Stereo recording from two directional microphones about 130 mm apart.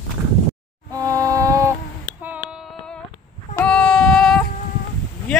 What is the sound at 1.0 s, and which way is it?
Music, 25° right (ahead or behind).